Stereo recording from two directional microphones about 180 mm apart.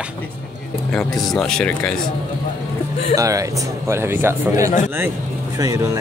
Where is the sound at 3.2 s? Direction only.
20° right (ahead or behind).